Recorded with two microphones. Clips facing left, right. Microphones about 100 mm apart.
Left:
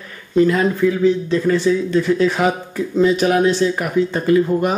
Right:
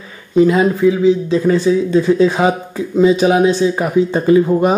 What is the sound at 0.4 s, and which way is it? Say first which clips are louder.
A man's voice: right 3 dB; 15° right (ahead or behind).